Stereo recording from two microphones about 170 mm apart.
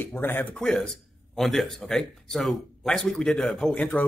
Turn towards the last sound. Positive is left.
turn(degrees=10)  # may be behind; listen again after turning